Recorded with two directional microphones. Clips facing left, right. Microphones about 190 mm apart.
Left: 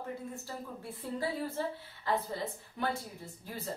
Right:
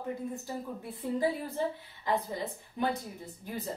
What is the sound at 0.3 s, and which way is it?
A woman's voice, 15° right (ahead or behind).